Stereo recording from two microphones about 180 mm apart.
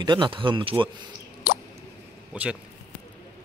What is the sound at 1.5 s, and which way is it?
Plop, 55° left (ahead or behind).